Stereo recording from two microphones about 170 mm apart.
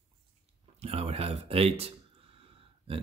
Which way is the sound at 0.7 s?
35° right (ahead or behind).